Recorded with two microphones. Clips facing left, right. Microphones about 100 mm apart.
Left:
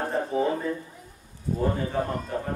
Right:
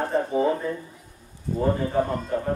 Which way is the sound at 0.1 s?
Centre (ahead or behind).